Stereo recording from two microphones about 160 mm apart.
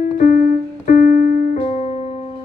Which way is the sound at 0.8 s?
50° left (ahead or behind).